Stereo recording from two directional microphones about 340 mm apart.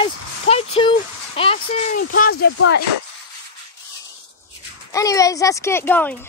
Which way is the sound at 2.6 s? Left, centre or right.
Left.